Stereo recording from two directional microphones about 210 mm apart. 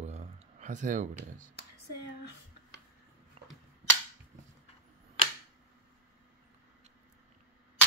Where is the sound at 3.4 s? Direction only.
30° right (ahead or behind).